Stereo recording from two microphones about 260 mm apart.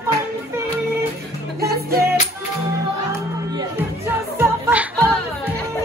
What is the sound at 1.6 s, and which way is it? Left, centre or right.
Music, right.